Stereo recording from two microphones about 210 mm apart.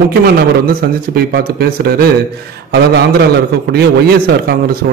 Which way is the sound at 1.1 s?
45° right (ahead or behind).